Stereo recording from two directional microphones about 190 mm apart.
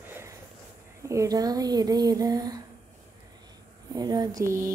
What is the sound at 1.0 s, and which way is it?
Speech, 15° right (ahead or behind).